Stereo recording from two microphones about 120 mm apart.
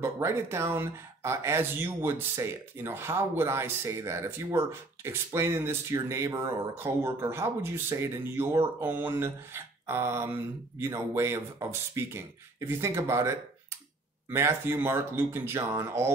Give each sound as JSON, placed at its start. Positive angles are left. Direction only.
{"t": 0.0, "sound": "speech", "side_deg": -20}